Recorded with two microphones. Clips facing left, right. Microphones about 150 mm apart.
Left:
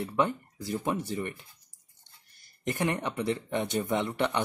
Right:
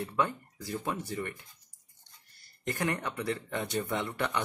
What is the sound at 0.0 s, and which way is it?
Speech, 20° left (ahead or behind).